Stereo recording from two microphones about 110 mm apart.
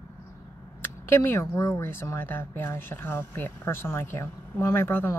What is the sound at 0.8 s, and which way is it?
Speech, 25° left (ahead or behind).